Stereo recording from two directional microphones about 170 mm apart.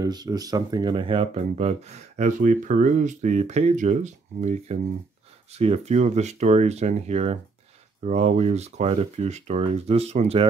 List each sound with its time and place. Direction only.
0.0 s speech: 25° right (ahead or behind); by 10.4 s 40° right (ahead or behind)